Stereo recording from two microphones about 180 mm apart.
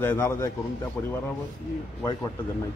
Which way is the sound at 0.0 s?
15° left (ahead or behind).